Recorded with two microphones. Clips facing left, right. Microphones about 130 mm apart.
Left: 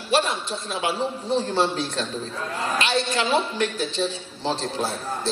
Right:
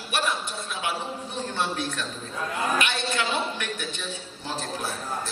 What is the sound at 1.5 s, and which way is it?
A man's voice, 35° left (ahead or behind).